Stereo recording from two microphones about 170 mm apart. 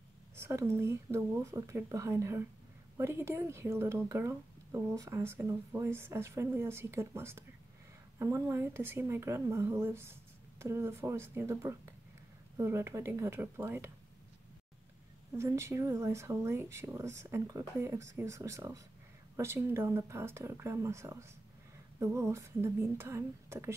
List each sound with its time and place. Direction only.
0.4 s speech: 15° right (ahead or behind)
15.3 s speech: 15° right (ahead or behind)